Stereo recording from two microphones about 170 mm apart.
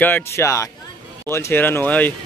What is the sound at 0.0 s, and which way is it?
Speech, 15° left (ahead or behind).